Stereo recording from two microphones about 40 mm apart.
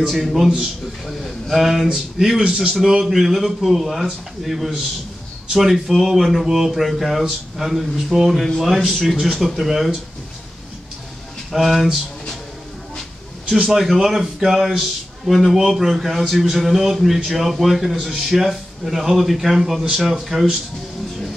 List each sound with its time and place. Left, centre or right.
0.0 s speech: centre
2.4 s a man's voice: centre
2.9 s speech: centre
11.5 s speech: centre
13.7 s speech: centre
17.9 s a man's voice: centre
18.2 s speech: centre